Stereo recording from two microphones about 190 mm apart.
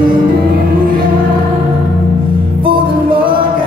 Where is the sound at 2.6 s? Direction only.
25° right (ahead or behind).